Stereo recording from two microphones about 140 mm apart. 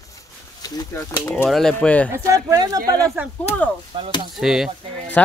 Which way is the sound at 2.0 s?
20° right (ahead or behind).